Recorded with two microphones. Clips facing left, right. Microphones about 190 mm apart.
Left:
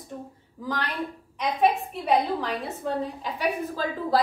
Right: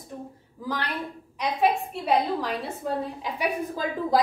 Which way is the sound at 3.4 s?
15° right (ahead or behind).